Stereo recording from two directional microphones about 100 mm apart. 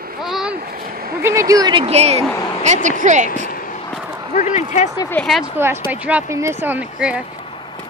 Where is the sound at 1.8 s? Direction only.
90° right.